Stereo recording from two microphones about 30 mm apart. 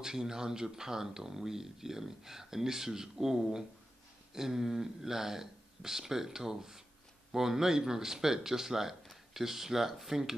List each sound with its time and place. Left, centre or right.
0.0 s speech: centre